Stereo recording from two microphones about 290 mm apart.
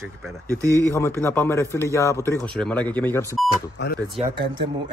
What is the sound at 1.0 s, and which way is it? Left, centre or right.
A man's voice, centre.